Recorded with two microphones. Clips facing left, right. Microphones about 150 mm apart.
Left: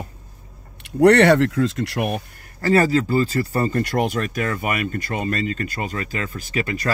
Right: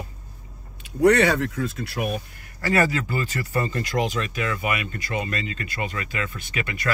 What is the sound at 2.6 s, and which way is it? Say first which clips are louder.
Speech: left 5 dB; 35° left (ahead or behind).